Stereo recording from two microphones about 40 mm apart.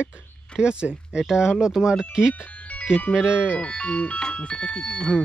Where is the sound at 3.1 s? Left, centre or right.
Right.